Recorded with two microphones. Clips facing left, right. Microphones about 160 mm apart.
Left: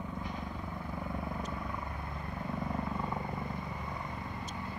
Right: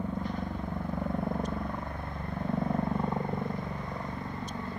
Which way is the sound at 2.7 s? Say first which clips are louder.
Right 6 dB; 60° right (ahead or behind).